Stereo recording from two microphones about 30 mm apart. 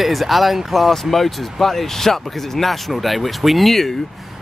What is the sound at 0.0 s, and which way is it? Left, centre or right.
Speech, centre.